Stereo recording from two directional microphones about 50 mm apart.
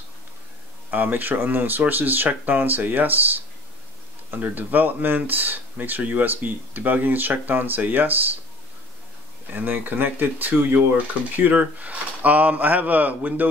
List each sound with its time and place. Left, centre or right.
0.8 s speech: right
4.4 s speech: right
9.6 s speech: right